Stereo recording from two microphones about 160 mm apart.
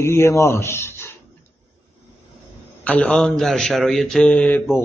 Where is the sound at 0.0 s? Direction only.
15° left (ahead or behind).